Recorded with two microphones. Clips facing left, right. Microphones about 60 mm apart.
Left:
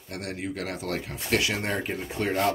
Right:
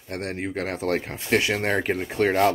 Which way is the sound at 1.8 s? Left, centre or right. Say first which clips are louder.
Right 6 dB; right.